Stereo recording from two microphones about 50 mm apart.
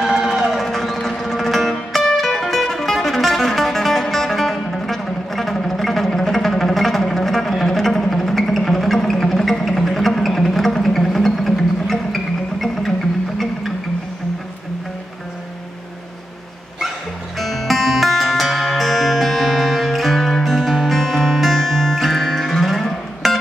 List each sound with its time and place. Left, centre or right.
0.0 s music: centre
0.7 s music: centre
17.4 s music: centre
23.2 s music: centre